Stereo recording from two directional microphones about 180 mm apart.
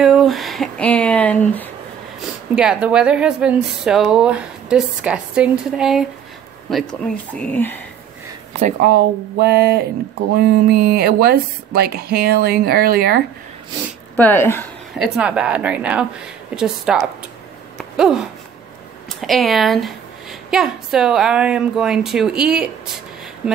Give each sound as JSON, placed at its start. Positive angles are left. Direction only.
{"t": 0.0, "sound": "speech", "side_deg": 0}
{"t": 2.5, "sound": "speech", "side_deg": -5}
{"t": 8.8, "sound": "speech", "side_deg": -55}
{"t": 14.1, "sound": "speech", "side_deg": 10}
{"t": 15.0, "sound": "a woman's voice", "side_deg": -5}